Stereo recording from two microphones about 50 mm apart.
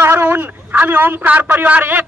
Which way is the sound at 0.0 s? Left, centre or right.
Right.